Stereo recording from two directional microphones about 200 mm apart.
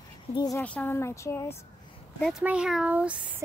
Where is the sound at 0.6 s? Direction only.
10° left (ahead or behind).